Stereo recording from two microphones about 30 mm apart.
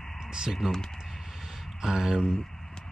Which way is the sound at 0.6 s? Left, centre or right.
Right.